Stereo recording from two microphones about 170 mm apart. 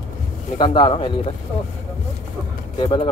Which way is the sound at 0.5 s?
30° left (ahead or behind).